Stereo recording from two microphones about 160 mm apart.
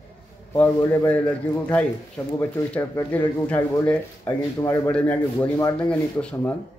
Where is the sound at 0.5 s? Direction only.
10° left (ahead or behind).